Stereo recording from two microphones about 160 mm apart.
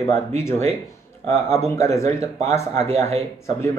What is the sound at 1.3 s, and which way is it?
Speech, 45° right (ahead or behind).